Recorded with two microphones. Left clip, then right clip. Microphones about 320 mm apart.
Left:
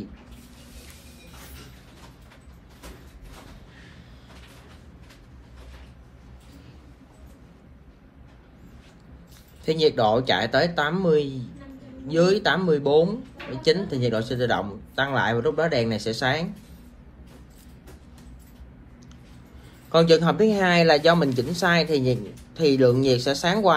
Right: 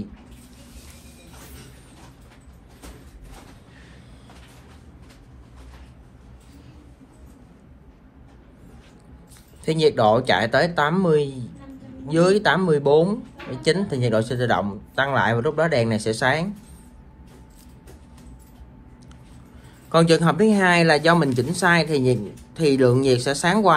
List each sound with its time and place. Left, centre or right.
9.7 s a man's voice: centre
19.9 s a man's voice: right